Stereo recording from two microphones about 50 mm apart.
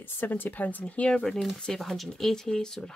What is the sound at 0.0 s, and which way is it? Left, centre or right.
Speech, left.